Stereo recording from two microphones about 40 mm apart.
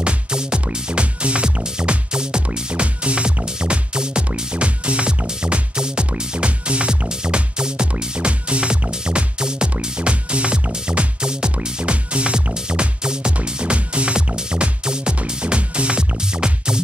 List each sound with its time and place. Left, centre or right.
0.0 s music: right